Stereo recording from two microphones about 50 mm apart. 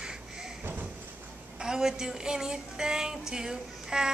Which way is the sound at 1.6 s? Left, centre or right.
Centre.